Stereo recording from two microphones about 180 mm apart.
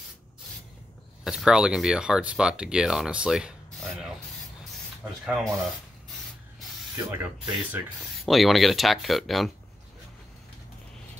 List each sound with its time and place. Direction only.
1.2 s speech: 5° right (ahead or behind)
5.2 s speech: centre (ahead or behind)
7.0 s speech: 10° right (ahead or behind)
8.3 s speech: centre (ahead or behind)